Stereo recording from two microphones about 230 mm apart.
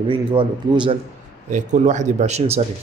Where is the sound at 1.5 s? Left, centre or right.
Right.